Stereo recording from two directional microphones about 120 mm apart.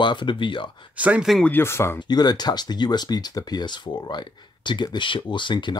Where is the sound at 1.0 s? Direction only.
10° right (ahead or behind).